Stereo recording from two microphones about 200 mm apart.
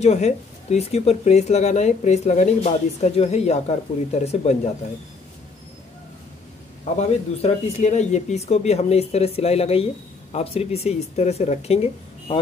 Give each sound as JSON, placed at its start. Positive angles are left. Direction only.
{"t": 0.0, "sound": "speech", "side_deg": 35}
{"t": 7.0, "sound": "speech", "side_deg": 35}